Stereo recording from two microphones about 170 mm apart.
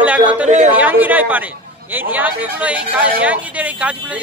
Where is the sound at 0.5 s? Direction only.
45° right (ahead or behind).